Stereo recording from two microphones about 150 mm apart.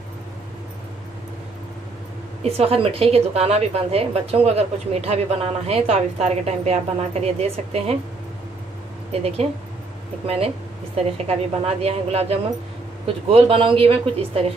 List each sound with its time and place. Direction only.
2.4 s a woman's voice: 40° right (ahead or behind)
9.1 s a woman's voice: 45° right (ahead or behind)